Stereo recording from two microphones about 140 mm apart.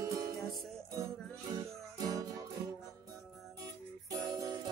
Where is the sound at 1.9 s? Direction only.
25° right (ahead or behind).